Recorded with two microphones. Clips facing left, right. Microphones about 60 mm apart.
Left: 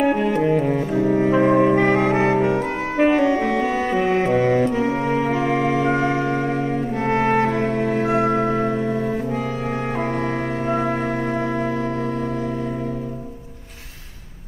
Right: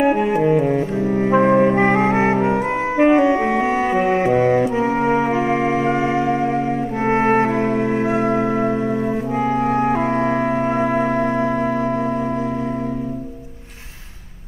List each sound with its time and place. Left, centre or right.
0.0 s music: centre
1.0 s saxophone: centre
1.4 s music: centre
1.8 s music: centre
3.0 s saxophone: centre
7.1 s music: right
8.1 s music: centre